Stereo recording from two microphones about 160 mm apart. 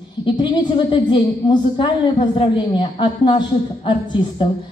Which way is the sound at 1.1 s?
30° left (ahead or behind).